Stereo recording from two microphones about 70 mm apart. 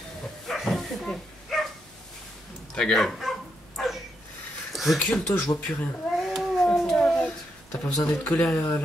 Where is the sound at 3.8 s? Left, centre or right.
Centre.